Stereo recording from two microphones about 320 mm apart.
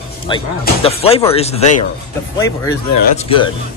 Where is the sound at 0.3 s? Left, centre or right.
Centre.